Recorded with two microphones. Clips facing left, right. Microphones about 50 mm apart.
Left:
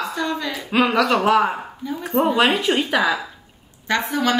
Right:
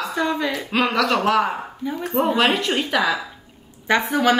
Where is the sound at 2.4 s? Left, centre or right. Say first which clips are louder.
Left 2 dB; centre.